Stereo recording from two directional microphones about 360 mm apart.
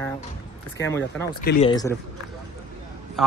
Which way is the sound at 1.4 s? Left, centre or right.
Left.